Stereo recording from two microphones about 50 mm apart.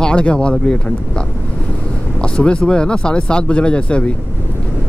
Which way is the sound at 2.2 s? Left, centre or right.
Left.